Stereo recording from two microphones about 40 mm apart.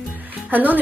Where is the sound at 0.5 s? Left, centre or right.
Right.